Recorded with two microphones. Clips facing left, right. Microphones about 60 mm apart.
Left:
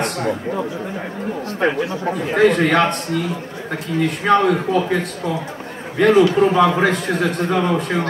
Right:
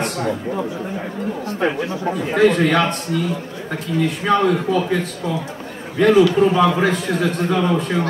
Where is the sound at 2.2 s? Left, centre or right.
Left.